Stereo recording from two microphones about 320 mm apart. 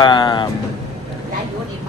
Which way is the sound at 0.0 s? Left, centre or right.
Centre.